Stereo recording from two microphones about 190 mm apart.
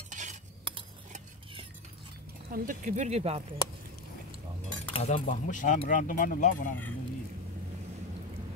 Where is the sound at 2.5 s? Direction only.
45° right (ahead or behind).